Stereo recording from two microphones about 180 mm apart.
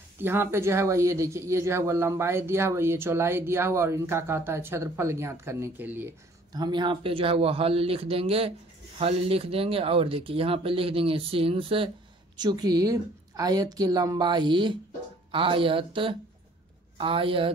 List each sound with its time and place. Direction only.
0.2 s speech: 10° right (ahead or behind)
6.5 s a woman's voice: 25° right (ahead or behind)